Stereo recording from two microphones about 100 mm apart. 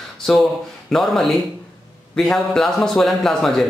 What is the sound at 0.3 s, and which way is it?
Speech, 5° left (ahead or behind).